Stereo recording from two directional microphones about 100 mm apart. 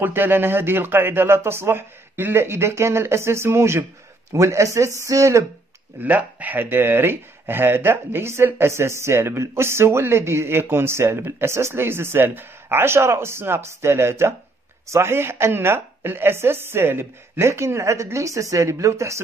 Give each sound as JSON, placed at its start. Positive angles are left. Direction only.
{"t": 0.0, "sound": "speech", "side_deg": -20}
{"t": 6.0, "sound": "speech", "side_deg": -15}